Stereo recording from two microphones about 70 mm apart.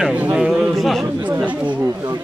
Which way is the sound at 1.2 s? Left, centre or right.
Right.